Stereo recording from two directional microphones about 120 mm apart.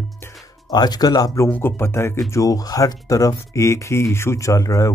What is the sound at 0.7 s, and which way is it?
Speech, 35° left (ahead or behind).